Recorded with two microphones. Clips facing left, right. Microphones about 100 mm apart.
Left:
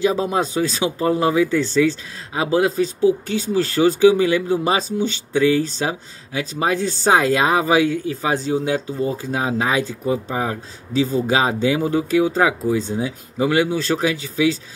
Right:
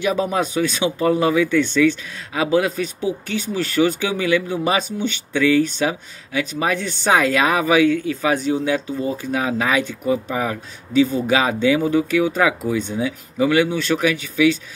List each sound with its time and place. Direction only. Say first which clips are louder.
0.0 s speech: left 1 dB; 30° left (ahead or behind)